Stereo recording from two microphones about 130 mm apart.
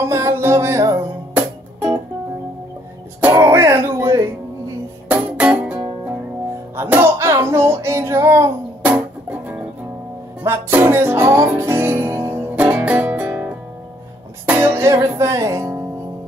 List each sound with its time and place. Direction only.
0.1 s music: 20° right (ahead or behind)
3.2 s music: 20° right (ahead or behind)
6.8 s a sound: 15° right (ahead or behind)
8.9 s music: 15° right (ahead or behind)
14.6 s music: 20° right (ahead or behind)